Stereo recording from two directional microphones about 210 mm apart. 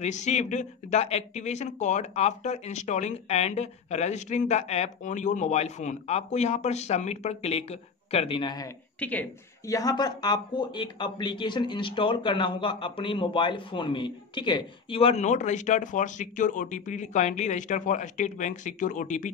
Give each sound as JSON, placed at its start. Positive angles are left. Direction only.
{"t": 0.0, "sound": "speech", "side_deg": 35}
{"t": 9.0, "sound": "speech", "side_deg": 10}